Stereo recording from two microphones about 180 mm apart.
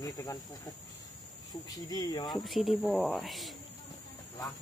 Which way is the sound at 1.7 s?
20° left (ahead or behind).